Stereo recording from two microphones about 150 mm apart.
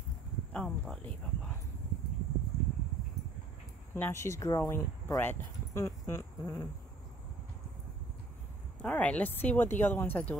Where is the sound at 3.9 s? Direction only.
15° left (ahead or behind).